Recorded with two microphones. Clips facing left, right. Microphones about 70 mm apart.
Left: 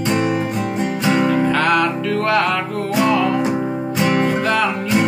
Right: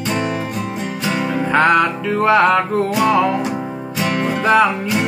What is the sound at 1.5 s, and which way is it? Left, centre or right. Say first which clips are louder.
Music: right 3 dB; centre.